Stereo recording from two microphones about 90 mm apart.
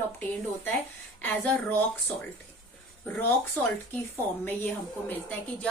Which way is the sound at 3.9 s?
20° left (ahead or behind).